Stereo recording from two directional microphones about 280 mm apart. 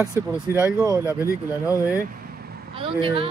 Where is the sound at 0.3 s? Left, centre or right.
Centre.